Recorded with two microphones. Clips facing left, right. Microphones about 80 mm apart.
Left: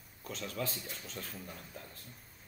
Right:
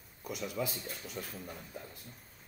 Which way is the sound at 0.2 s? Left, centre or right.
Centre.